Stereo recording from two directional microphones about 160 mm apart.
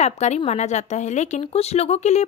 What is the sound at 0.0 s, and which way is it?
A woman's voice, 45° left (ahead or behind).